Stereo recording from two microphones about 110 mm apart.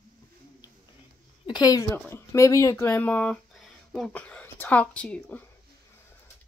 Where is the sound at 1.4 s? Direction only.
40° left (ahead or behind).